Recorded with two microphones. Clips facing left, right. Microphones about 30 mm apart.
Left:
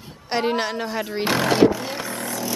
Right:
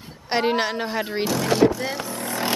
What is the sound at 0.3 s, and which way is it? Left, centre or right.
Speech, centre.